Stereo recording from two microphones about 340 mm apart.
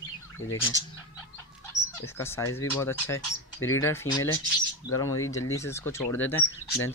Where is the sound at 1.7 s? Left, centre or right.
Centre.